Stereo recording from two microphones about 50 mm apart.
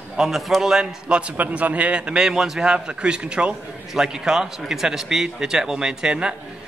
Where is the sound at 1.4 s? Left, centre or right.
Right.